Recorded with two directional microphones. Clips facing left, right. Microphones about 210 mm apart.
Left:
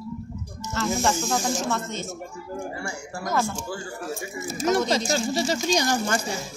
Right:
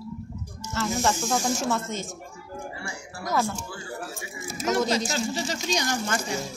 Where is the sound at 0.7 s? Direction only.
Centre (ahead or behind).